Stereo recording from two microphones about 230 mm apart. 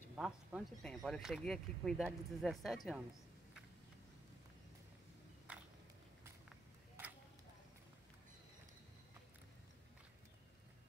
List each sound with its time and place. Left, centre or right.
0.1 s speech: centre
7.0 s tick-tock: centre